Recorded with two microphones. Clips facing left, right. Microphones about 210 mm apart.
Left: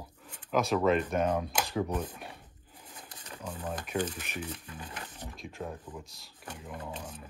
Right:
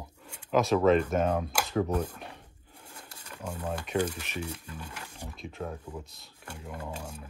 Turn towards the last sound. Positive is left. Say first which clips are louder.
# right 2 dB
turn(degrees=-10)  # may be behind; listen again after turning